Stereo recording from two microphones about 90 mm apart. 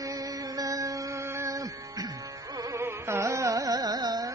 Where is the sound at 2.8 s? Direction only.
30° right (ahead or behind); by 4.3 s 45° right (ahead or behind).